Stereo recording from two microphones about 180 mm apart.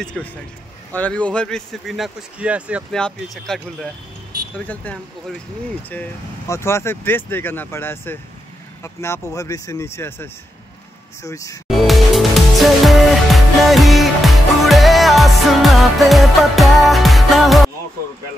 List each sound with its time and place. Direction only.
0.0 s speech: 5° left (ahead or behind)
11.7 s music: centre (ahead or behind)